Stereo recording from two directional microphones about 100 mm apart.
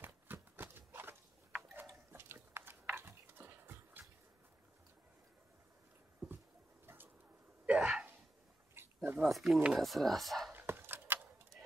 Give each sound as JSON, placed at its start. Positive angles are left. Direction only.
{"t": 0.0, "sound": "a sound", "side_deg": -20}
{"t": 2.1, "sound": "a sound", "side_deg": -25}
{"t": 7.6, "sound": "sneeze", "side_deg": -10}
{"t": 8.7, "sound": "dog", "side_deg": -20}
{"t": 9.2, "sound": "speech", "side_deg": 0}
{"t": 10.5, "sound": "dog", "side_deg": -20}